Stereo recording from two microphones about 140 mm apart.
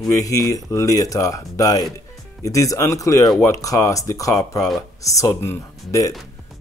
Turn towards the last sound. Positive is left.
turn(degrees=20)  # may be behind; listen again after turning